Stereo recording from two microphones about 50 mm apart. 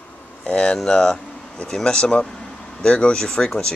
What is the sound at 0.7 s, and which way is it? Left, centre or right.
Speech, centre.